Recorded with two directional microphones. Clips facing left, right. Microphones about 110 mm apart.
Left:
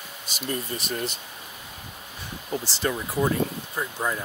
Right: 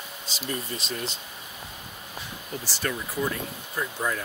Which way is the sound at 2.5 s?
25° left (ahead or behind).